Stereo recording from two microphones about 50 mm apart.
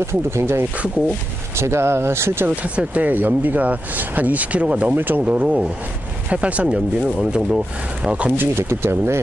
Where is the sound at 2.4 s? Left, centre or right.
Right.